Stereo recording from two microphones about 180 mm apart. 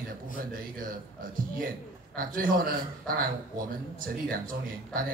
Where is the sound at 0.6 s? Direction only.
50° right (ahead or behind).